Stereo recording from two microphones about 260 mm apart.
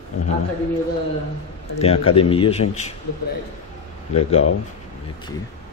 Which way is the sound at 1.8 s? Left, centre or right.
Left.